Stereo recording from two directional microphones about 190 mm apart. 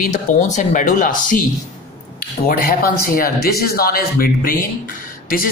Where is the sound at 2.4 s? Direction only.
50° left (ahead or behind).